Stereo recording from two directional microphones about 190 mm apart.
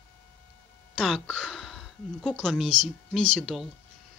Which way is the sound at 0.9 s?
Centre (ahead or behind).